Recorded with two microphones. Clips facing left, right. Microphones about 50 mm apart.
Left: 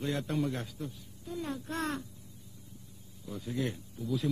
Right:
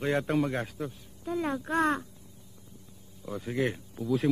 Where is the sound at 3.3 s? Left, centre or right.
Right.